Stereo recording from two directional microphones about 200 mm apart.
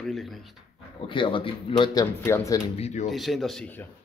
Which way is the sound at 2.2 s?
15° left (ahead or behind).